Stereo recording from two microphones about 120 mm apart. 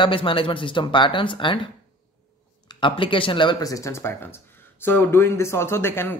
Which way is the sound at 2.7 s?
45° left (ahead or behind).